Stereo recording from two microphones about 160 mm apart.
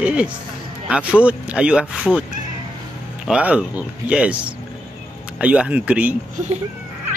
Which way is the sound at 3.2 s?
5° right (ahead or behind).